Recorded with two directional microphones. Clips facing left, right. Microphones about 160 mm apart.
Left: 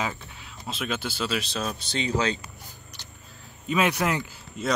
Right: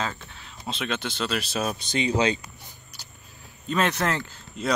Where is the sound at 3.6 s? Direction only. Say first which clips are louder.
Left 1 dB; 10° left (ahead or behind).